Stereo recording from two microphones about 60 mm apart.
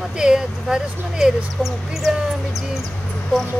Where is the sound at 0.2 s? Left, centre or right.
Centre.